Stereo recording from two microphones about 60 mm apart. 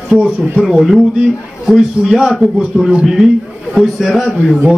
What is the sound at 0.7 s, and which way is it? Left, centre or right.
Speech, centre.